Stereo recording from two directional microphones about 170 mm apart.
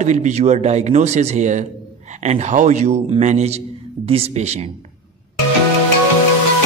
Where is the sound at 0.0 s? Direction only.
45° right (ahead or behind).